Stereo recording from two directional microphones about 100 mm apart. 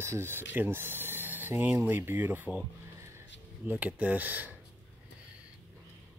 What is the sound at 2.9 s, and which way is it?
Music, 30° right (ahead or behind).